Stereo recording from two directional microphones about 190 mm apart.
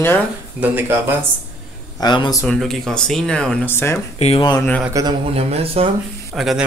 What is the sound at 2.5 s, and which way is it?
Speech, centre (ahead or behind).